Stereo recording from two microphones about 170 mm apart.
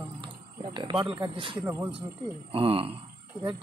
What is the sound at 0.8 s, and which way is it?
Speech, 30° right (ahead or behind).